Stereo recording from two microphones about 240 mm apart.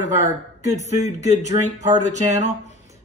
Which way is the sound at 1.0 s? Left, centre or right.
Left.